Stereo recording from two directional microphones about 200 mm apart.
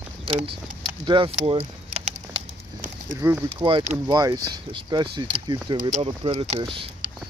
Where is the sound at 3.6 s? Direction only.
30° right (ahead or behind).